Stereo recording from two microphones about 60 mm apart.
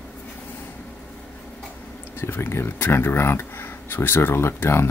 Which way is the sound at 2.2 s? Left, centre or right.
Left.